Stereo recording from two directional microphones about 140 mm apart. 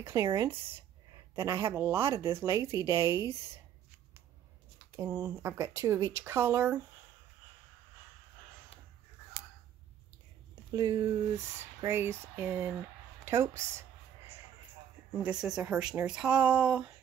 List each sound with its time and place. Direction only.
0.0 s speech: 25° right (ahead or behind)
4.9 s speech: 25° right (ahead or behind)
10.7 s speech: 30° right (ahead or behind)
11.3 s speech: 20° right (ahead or behind)
15.4 s speech: 5° right (ahead or behind)